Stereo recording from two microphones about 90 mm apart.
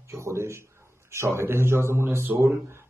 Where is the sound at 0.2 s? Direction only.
30° right (ahead or behind).